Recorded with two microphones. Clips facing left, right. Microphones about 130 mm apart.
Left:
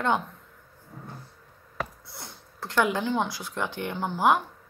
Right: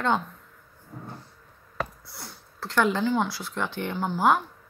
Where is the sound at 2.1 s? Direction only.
20° left (ahead or behind).